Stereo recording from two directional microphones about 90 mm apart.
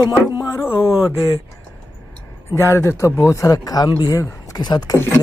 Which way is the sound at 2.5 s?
25° left (ahead or behind).